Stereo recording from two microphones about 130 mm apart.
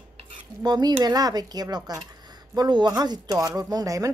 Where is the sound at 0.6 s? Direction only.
30° right (ahead or behind).